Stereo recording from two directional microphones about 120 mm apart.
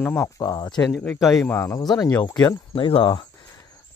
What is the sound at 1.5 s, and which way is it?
Speech, 25° left (ahead or behind).